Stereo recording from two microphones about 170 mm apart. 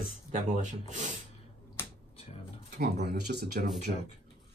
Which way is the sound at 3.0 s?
75° right (ahead or behind).